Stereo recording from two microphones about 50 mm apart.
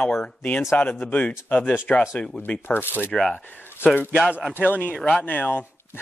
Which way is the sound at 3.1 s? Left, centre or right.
Centre.